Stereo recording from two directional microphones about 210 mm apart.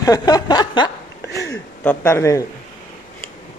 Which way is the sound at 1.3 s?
10° left (ahead or behind).